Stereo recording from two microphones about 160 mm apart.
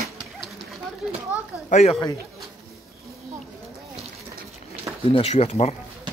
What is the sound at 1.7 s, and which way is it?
Speech, 45° left (ahead or behind).